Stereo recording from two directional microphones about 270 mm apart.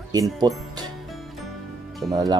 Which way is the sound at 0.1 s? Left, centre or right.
Centre.